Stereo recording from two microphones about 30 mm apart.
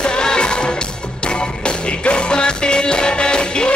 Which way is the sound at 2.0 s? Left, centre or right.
Left.